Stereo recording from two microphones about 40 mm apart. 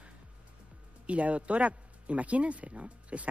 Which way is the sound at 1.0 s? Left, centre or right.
Right.